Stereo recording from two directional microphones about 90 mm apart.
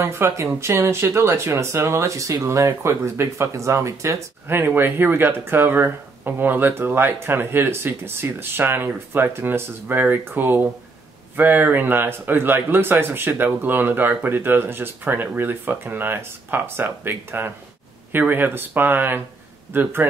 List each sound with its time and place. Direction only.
0.0 s speech: 30° right (ahead or behind)